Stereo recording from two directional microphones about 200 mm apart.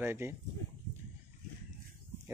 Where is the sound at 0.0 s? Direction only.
10° right (ahead or behind).